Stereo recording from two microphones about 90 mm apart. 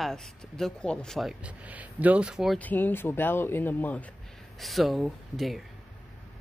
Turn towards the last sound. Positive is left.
turn(degrees=0)  # may be behind; listen again after turning